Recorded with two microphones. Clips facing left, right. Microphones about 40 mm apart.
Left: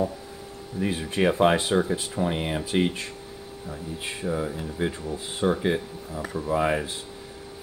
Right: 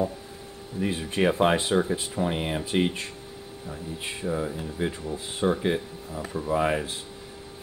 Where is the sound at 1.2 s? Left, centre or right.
Centre.